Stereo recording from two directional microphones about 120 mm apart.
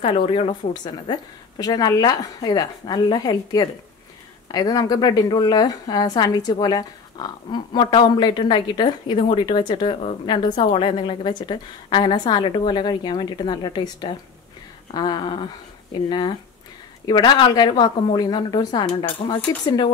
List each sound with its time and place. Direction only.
0.0 s speech: 50° left (ahead or behind)
1.6 s a woman's voice: 35° left (ahead or behind)